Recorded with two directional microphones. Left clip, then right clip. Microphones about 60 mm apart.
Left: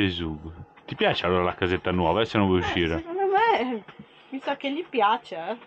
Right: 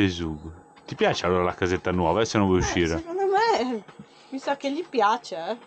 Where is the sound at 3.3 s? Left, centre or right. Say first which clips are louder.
Left 1 dB; right.